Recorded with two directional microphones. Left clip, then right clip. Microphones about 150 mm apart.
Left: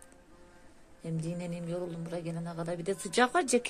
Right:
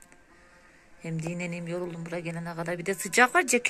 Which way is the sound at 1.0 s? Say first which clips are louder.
Right 4 dB; 15° right (ahead or behind).